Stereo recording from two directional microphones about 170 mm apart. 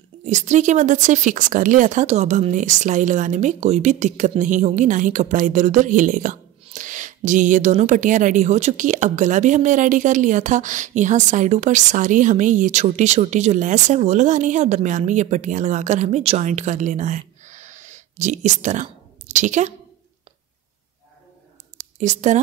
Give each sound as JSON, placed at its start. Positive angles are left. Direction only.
{"t": 0.2, "sound": "speech", "side_deg": -45}
{"t": 22.0, "sound": "speech", "side_deg": -45}